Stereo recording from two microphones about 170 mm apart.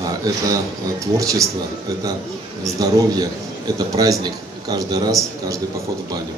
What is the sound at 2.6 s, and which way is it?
Speech, 20° right (ahead or behind).